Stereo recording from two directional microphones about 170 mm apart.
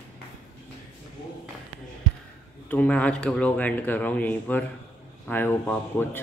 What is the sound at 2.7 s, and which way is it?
Speech, 10° left (ahead or behind).